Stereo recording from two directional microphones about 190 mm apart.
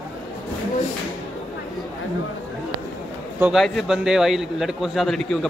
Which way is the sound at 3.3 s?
5° right (ahead or behind).